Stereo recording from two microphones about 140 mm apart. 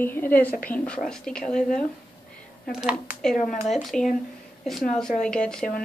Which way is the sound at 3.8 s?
Centre (ahead or behind).